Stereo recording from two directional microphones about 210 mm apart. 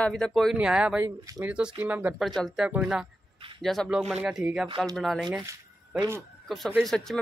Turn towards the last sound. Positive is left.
turn(degrees=0)  # may be behind; listen again after turning